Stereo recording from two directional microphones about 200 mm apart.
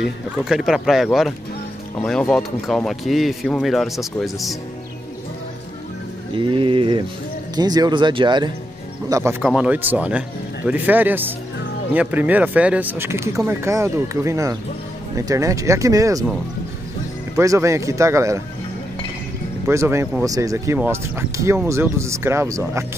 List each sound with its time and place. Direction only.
0.5 s speech: centre (ahead or behind)
6.3 s speech: 25° right (ahead or behind)
17.4 s speech: 15° right (ahead or behind)
19.7 s speech: 15° right (ahead or behind)